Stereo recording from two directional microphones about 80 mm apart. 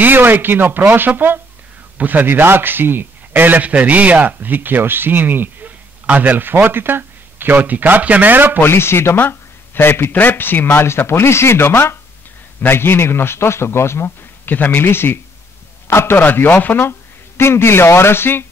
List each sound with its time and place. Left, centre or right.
0.0 s a man's voice: right
8.5 s a man's voice: left